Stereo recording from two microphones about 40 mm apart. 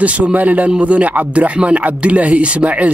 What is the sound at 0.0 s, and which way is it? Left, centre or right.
Speech, right.